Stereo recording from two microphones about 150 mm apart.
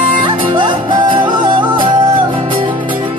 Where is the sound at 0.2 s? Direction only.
35° right (ahead or behind).